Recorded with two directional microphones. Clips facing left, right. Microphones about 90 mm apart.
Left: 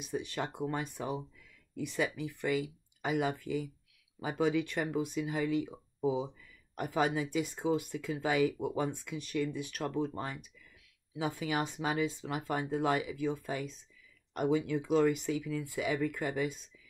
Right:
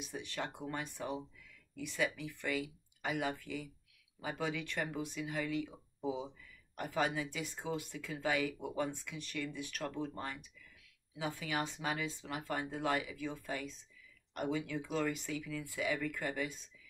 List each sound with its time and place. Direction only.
0.2 s speech: 15° left (ahead or behind)
6.7 s speech: 20° left (ahead or behind)